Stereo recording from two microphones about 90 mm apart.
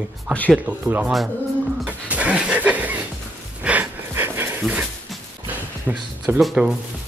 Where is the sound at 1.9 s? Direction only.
15° right (ahead or behind).